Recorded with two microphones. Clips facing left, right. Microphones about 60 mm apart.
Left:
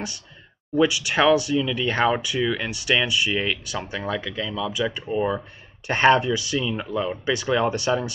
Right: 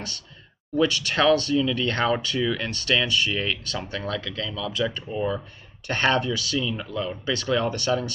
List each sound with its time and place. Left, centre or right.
0.7 s speech: centre